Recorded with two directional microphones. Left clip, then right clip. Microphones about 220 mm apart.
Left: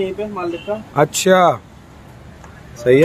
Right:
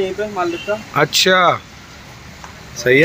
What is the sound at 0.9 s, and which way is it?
Speech, 10° left (ahead or behind).